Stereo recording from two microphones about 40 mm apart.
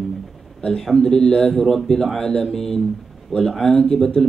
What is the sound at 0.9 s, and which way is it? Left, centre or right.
Speech, centre.